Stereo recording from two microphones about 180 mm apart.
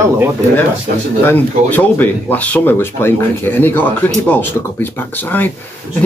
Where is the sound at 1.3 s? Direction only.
10° left (ahead or behind).